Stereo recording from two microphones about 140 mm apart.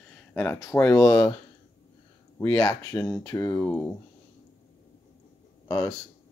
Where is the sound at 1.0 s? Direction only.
25° left (ahead or behind).